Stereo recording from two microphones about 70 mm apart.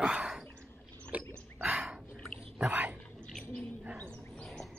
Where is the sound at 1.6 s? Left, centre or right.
Centre.